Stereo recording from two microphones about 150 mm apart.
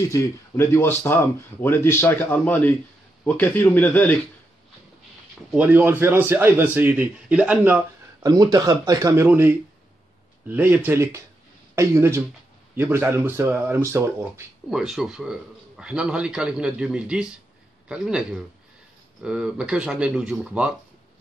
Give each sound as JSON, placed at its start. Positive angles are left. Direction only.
{"t": 0.1, "sound": "speech", "side_deg": 20}
{"t": 5.5, "sound": "a man's voice", "side_deg": -10}
{"t": 8.2, "sound": "speech", "side_deg": -25}
{"t": 10.5, "sound": "a man's voice", "side_deg": -15}
{"t": 14.7, "sound": "a man's voice", "side_deg": -5}